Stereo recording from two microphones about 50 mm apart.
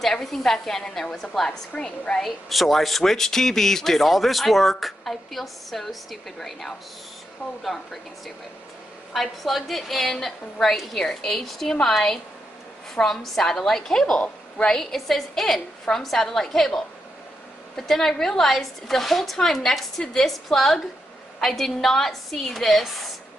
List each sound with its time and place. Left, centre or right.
0.0 s a woman's voice: centre
1.8 s a woman's voice: centre
2.2 s speech: centre
9.1 s a woman's voice: centre